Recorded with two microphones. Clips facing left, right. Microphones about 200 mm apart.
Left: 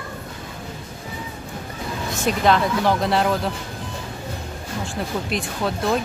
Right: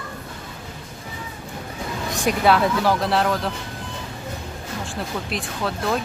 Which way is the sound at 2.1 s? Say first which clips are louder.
Even; 10° right (ahead or behind).